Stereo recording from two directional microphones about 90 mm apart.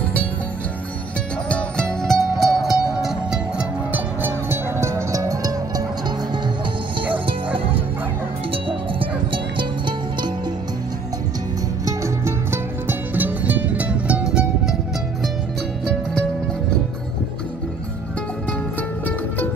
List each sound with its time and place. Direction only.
1.5 s music: 10° left (ahead or behind); by 3.6 s 5° right (ahead or behind)
3.9 s music: 25° right (ahead or behind)
7.1 s music: 80° right; by 10.3 s 60° right (ahead or behind)
11.8 s music: 35° right (ahead or behind)
13.1 s music: 20° right (ahead or behind)